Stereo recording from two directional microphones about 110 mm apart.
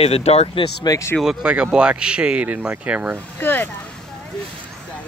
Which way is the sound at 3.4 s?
20° left (ahead or behind).